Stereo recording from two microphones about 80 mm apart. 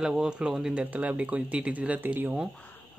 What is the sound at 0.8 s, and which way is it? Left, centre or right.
Speech, centre.